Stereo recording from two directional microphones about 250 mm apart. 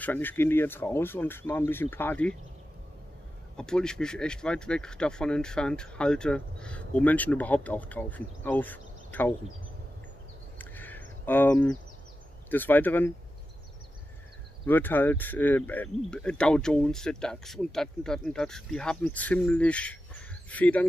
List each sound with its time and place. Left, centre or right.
0.0 s speech: centre
3.5 s speech: centre
10.6 s a sound: centre
12.4 s speech: centre
14.7 s speech: centre